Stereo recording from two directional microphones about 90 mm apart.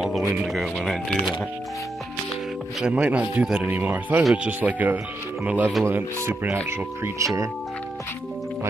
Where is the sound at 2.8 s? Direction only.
15° right (ahead or behind); by 7.4 s 35° right (ahead or behind).